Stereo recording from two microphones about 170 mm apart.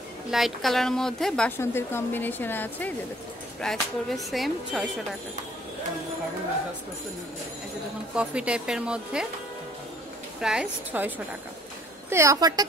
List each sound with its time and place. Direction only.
0.3 s speech: centre (ahead or behind)
1.6 s speech: 15° left (ahead or behind)
3.6 s speech: centre (ahead or behind)
8.1 s speech: 5° right (ahead or behind)
10.4 s a woman's voice: 5° right (ahead or behind); by 12.6 s 20° right (ahead or behind)